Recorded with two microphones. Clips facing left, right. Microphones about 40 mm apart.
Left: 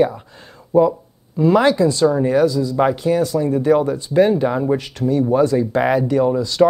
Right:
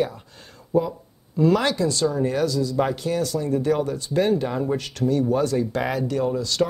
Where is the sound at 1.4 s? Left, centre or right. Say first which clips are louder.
Left 6 dB; left.